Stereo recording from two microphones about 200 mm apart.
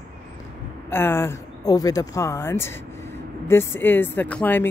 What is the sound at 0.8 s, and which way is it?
Speech, 10° left (ahead or behind).